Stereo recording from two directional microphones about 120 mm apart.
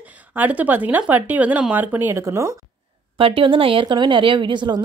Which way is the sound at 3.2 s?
45° right (ahead or behind).